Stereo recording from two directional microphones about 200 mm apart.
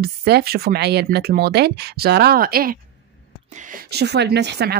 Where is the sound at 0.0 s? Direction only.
50° right (ahead or behind).